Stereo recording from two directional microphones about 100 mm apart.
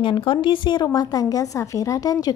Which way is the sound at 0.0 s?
55° left (ahead or behind).